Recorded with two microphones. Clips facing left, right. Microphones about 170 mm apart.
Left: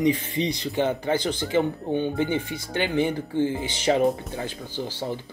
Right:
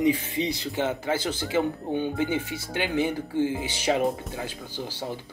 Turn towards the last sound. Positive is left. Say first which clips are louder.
# left 4 dB
turn(degrees=-5)  # may be behind; listen again after turning